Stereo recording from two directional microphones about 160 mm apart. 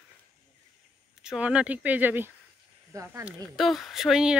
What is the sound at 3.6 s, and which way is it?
Speech, centre (ahead or behind).